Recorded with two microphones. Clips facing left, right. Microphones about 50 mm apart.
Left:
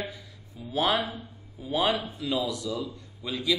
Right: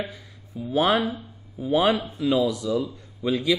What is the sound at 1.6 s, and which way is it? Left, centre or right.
Speech, centre.